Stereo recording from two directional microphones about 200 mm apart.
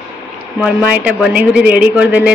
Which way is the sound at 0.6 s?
5° right (ahead or behind).